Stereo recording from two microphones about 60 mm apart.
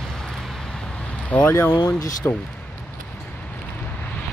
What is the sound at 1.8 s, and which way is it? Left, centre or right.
Speech, left.